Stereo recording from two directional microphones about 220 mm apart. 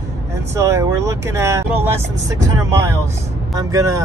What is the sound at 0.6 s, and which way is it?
Speech, 10° right (ahead or behind).